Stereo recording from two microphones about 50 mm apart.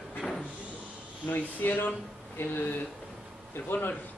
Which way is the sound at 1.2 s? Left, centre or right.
Left.